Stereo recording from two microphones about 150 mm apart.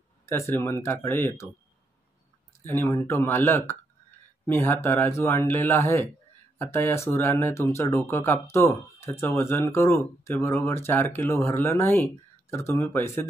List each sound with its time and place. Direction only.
0.3 s speech: 15° left (ahead or behind)
2.7 s speech: 15° left (ahead or behind)